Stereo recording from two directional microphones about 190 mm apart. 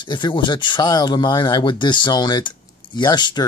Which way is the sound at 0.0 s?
25° left (ahead or behind).